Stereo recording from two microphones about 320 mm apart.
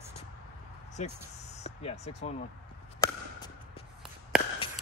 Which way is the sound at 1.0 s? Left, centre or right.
Left.